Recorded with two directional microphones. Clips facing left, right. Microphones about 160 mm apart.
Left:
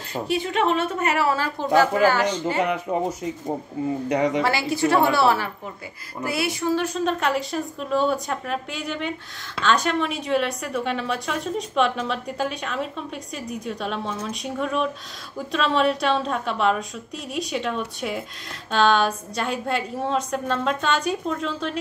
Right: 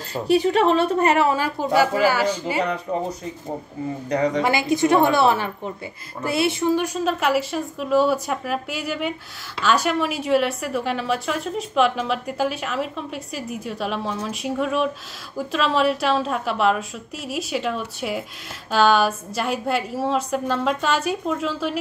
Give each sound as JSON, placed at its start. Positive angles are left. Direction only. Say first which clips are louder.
{"t": 0.3, "sound": "a woman's voice", "louder": "right 5 dB", "side_deg": -35}
{"t": 1.2, "sound": "speech", "louder": "right 2 dB", "side_deg": -15}
{"t": 2.9, "sound": "speech", "louder": "left 1 dB", "side_deg": 10}
{"t": 4.4, "sound": "a woman's voice", "louder": "right 2 dB", "side_deg": -15}
{"t": 6.7, "sound": "a woman's voice", "louder": "right 1 dB", "side_deg": -10}